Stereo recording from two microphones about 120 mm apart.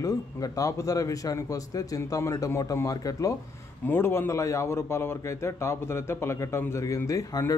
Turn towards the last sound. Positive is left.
turn(degrees=25)  # may be behind; listen again after turning